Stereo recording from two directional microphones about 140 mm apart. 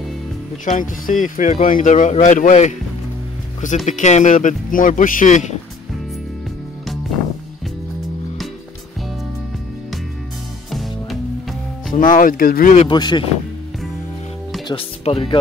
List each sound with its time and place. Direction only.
0.7 s speech: 70° left (ahead or behind)
10.7 s music: centre (ahead or behind)
11.9 s speech: 70° left (ahead or behind); by 12.7 s 90° left
12.9 s speech: 30° left (ahead or behind)
14.7 s speech: 45° left (ahead or behind)